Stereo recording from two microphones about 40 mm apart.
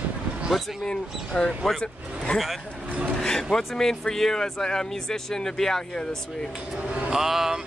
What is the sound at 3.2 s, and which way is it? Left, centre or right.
Speech, centre.